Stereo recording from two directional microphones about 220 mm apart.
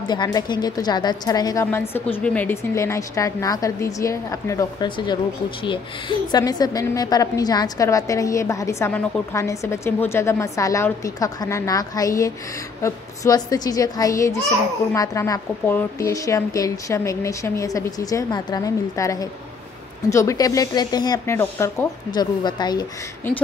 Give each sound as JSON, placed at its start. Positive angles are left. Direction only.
{"t": 0.1, "sound": "a woman's voice", "side_deg": 20}